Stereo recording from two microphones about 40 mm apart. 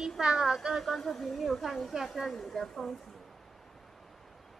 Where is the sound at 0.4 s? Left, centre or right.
Centre.